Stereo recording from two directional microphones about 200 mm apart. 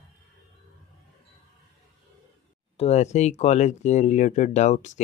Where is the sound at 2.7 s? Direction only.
30° left (ahead or behind).